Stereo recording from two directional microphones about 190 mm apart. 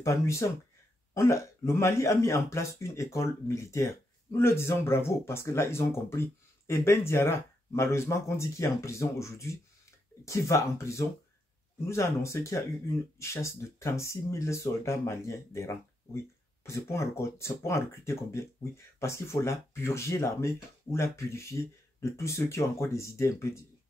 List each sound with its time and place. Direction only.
0.0 s speech: 15° left (ahead or behind)